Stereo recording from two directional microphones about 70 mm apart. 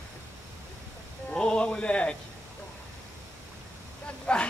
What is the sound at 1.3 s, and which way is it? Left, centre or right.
Speech, centre.